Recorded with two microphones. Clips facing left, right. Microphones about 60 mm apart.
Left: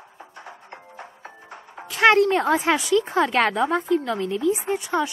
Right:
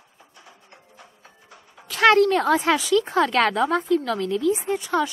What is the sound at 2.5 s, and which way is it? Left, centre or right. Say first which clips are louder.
A woman's voice: even; centre.